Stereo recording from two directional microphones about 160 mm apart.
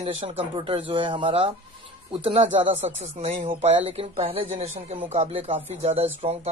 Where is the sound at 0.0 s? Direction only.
35° right (ahead or behind).